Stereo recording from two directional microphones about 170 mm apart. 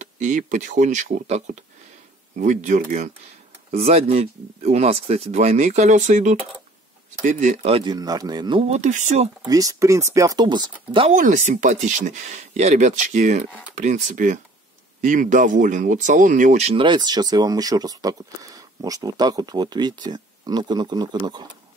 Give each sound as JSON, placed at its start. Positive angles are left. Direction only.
{"t": 0.0, "sound": "speech", "side_deg": -45}
{"t": 7.9, "sound": "speech", "side_deg": -20}
{"t": 9.5, "sound": "speech", "side_deg": -20}
{"t": 11.1, "sound": "speech", "side_deg": -45}
{"t": 16.8, "sound": "speech", "side_deg": -25}